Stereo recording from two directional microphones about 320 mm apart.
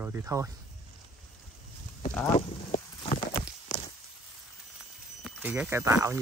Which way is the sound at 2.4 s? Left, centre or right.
Centre.